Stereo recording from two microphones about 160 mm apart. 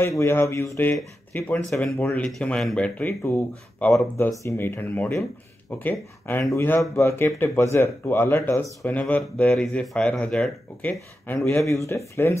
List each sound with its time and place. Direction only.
0.2 s speech: 15° left (ahead or behind)